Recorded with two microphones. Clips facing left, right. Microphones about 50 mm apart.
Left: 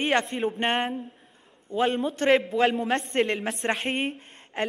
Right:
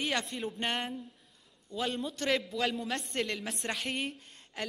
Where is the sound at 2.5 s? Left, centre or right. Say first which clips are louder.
Left 10 dB; left.